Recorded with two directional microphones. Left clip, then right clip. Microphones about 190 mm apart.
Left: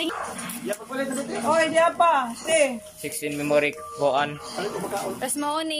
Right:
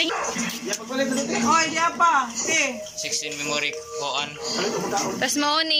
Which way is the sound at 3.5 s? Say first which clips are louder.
Left 6 dB; 50° left (ahead or behind).